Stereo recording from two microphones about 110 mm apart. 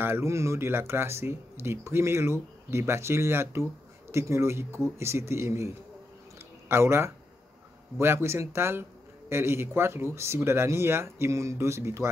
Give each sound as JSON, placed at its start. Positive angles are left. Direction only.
{"t": 0.0, "sound": "speech", "side_deg": -25}